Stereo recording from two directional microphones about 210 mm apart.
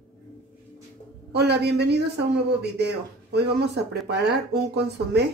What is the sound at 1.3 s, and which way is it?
Speech, 50° right (ahead or behind).